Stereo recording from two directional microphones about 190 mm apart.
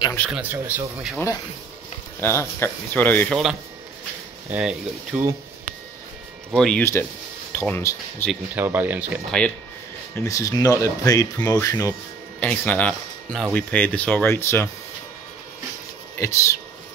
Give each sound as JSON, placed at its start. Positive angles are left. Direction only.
{"t": 0.0, "sound": "a sound", "side_deg": 10}
{"t": 0.3, "sound": "speech", "side_deg": -10}
{"t": 2.1, "sound": "speech", "side_deg": 10}
{"t": 6.5, "sound": "speech", "side_deg": 0}
{"t": 6.8, "sound": "speech", "side_deg": 15}
{"t": 8.3, "sound": "speech", "side_deg": -10}
{"t": 10.1, "sound": "speech", "side_deg": 15}
{"t": 16.2, "sound": "speech", "side_deg": 15}